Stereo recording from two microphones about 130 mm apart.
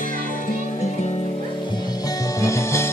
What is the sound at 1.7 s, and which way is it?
Music, 30° left (ahead or behind).